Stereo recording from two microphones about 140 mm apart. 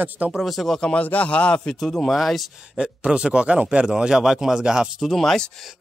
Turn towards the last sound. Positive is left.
turn(degrees=0)  # may be behind; listen again after turning